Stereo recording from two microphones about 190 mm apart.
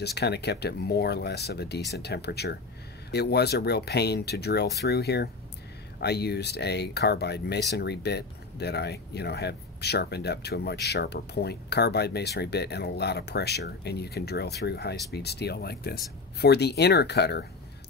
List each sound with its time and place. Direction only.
0.0 s speech: 60° left (ahead or behind)